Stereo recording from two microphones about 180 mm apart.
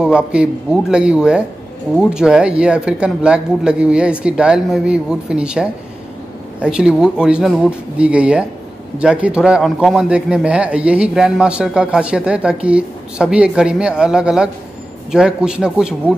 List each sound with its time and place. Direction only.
0.0 s a man's voice: 5° right (ahead or behind)